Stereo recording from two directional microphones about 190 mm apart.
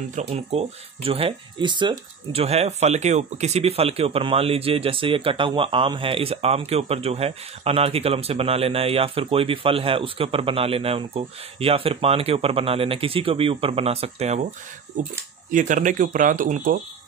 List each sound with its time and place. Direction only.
0.1 s speech: 35° right (ahead or behind)
15.5 s speech: 45° right (ahead or behind)